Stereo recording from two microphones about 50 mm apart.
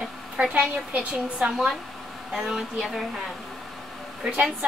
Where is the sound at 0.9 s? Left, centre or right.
Right.